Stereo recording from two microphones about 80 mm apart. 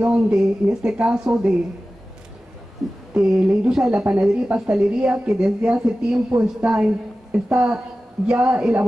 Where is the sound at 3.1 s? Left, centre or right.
Centre.